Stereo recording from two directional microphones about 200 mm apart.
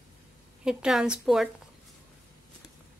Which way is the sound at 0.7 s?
5° right (ahead or behind).